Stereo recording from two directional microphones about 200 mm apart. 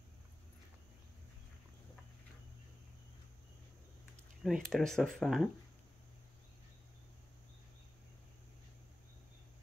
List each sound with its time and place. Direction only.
4.4 s speech: centre (ahead or behind)